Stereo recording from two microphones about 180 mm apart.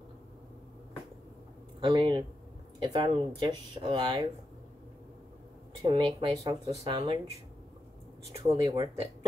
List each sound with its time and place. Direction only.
1.8 s speech: 25° right (ahead or behind)
5.8 s speech: 25° right (ahead or behind)
8.5 s speech: 25° right (ahead or behind)